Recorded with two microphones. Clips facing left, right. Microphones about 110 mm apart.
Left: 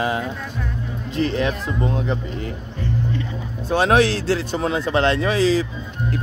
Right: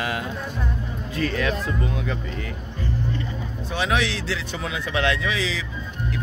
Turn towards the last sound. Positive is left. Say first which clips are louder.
# left 9 dB
turn(degrees=40)  # may be behind; listen again after turning